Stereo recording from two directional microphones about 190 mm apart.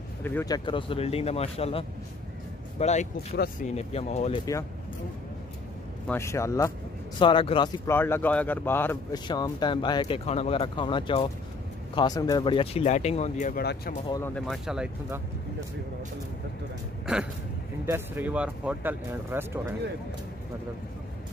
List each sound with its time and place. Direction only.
0.2 s speech: 10° left (ahead or behind)
0.7 s speech: 25° left (ahead or behind)
6.0 s speech: 15° left (ahead or behind)
7.2 s speech: 25° left (ahead or behind)
7.9 s speech: 10° left (ahead or behind)
9.3 s speech: 25° left (ahead or behind); by 13.7 s 40° left (ahead or behind)
14.2 s speech: 5° left (ahead or behind)
17.0 s a sound: 5° right (ahead or behind)
17.8 s speech: 10° right (ahead or behind)